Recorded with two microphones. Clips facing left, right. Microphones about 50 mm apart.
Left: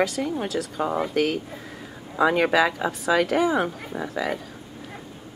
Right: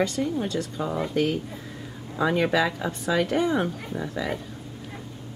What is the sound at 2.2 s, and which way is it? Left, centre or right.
Speech, left.